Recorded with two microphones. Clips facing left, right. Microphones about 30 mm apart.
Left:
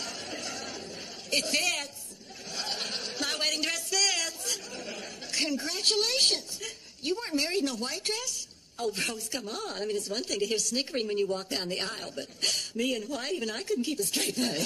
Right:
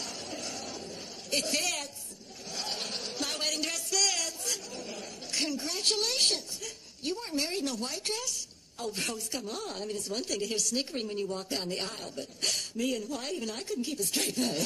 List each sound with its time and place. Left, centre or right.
0.0 s chatter: left
2.5 s a sound: centre
7.8 s a woman's voice: centre